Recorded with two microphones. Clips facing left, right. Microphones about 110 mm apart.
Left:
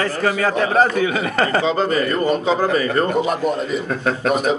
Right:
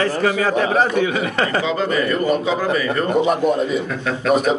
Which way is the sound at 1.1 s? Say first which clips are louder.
Left 1 dB; centre (ahead or behind).